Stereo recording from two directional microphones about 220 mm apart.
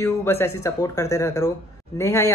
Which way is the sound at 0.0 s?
10° left (ahead or behind).